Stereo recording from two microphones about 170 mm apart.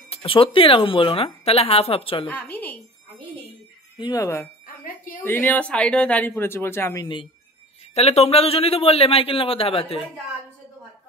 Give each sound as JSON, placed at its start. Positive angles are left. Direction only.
{"t": 0.1, "sound": "speech", "side_deg": 30}
{"t": 2.2, "sound": "speech", "side_deg": 10}
{"t": 4.0, "sound": "speech", "side_deg": 20}
{"t": 4.6, "sound": "bicycle bell", "side_deg": 55}
{"t": 5.2, "sound": "speech", "side_deg": 10}
{"t": 7.9, "sound": "speech", "side_deg": 40}